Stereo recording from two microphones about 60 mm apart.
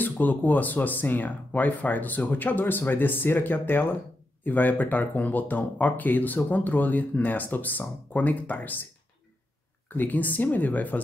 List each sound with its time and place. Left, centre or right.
0.0 s speech: left
9.9 s speech: left